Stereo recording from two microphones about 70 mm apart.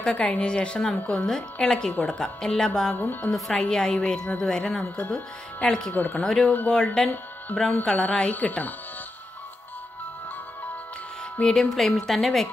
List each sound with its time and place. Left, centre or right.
0.0 s a woman's voice: centre
1.2 s a woman's voice: centre
3.0 s speech: left
3.3 s a woman's voice: centre
4.8 s speech: left
5.1 s a woman's voice: centre
5.9 s speech: left
6.2 s a woman's voice: centre; by 8.7 s left
11.3 s a woman's voice: centre
11.7 s a woman's voice: centre